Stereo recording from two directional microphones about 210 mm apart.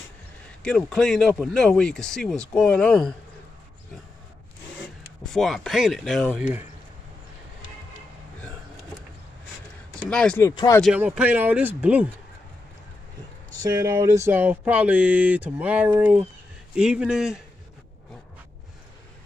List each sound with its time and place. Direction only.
0.5 s speech: 5° left (ahead or behind)
5.3 s speech: centre (ahead or behind)
10.0 s speech: 5° left (ahead or behind)
10.5 s speech: 20° left (ahead or behind)
10.8 s speech: 5° right (ahead or behind)
13.6 s speech: 15° right (ahead or behind)